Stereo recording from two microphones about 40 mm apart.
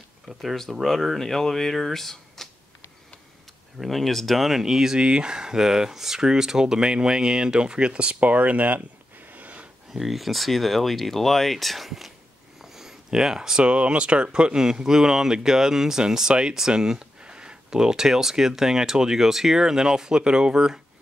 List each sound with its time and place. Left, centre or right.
0.4 s speech: centre
3.8 s speech: centre
4.9 s speech: right
9.3 s sniff: right
9.9 s speech: centre
12.6 s a sound: centre
13.7 s speech: right